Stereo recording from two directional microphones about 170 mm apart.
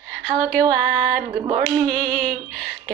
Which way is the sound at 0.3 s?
5° left (ahead or behind).